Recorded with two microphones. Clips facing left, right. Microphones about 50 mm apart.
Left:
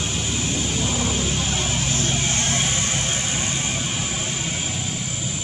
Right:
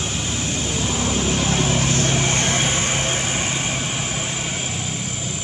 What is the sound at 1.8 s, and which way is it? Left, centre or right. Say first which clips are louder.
Vehicle: right 4 dB; right.